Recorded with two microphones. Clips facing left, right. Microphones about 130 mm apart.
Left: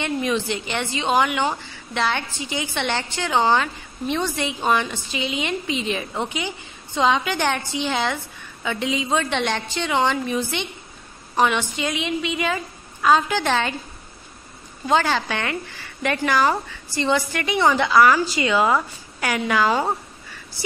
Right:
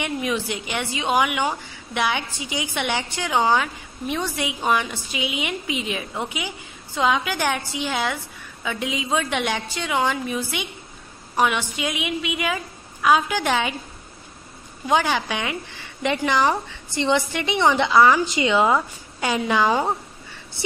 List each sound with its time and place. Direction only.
0.0 s a woman's voice: 10° right (ahead or behind)
14.9 s speech: 15° right (ahead or behind)